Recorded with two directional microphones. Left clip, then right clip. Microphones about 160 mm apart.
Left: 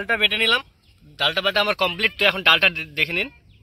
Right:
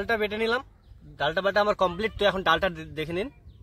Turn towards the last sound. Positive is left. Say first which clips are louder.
# left 9 dB
turn(degrees=0)  # may be behind; listen again after turning